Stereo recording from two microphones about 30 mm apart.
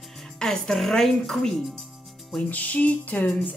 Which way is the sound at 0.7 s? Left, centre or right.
Centre.